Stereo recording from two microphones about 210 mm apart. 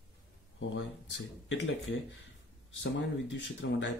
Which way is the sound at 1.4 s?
60° left (ahead or behind).